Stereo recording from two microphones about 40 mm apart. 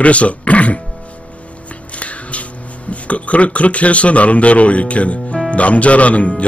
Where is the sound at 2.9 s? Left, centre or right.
Left.